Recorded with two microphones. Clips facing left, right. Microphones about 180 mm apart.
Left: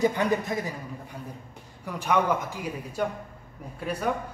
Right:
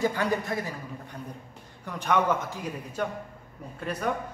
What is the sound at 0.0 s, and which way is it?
Speech, 20° left (ahead or behind).